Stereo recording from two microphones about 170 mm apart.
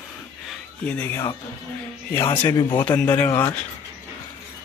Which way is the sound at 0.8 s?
10° left (ahead or behind).